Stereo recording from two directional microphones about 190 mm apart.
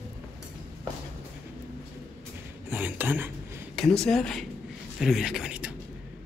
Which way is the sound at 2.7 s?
10° right (ahead or behind).